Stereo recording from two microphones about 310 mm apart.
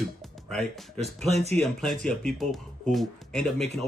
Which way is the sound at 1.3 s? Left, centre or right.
Centre.